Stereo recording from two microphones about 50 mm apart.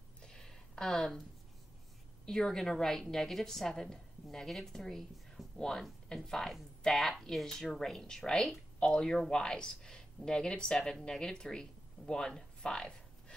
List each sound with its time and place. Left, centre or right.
0.2 s a sound: centre
2.2 s speech: centre
8.7 s speech: centre